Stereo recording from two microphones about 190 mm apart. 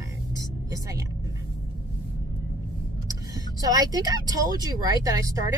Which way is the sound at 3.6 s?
20° right (ahead or behind).